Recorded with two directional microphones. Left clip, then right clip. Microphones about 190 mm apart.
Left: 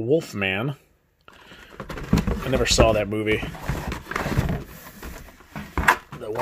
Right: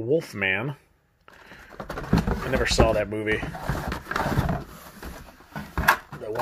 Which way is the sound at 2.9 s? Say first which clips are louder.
Left 2 dB; 40° left (ahead or behind).